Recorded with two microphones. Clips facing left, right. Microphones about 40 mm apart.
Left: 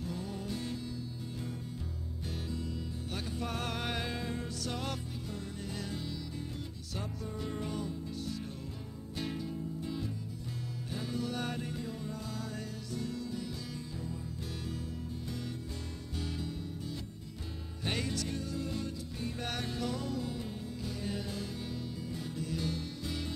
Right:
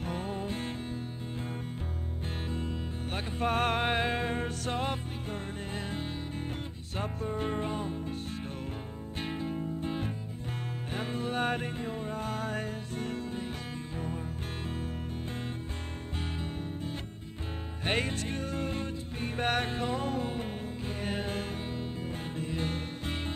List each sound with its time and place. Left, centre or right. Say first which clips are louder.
0.0 s music: right 5 dB; right
2.5 s music: right 3 dB; right
16.2 s music: right 1 dB; right